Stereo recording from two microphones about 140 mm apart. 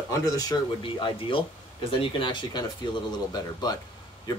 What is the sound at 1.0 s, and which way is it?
Speech, 40° left (ahead or behind).